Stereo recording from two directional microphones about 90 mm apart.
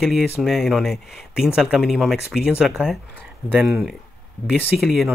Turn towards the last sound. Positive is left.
turn(degrees=0)  # may be behind; listen again after turning